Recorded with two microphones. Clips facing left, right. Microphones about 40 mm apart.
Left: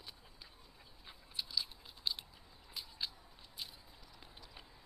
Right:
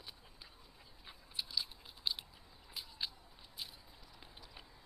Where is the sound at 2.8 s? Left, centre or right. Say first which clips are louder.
Even; centre.